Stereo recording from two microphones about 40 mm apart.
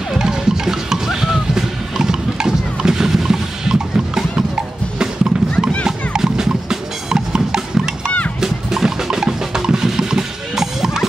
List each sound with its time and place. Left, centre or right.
0.2 s music: centre